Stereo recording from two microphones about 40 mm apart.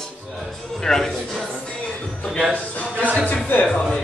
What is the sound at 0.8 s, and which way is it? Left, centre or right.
Speech, centre.